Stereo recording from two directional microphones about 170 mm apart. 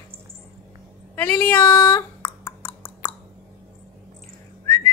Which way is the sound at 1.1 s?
15° left (ahead or behind).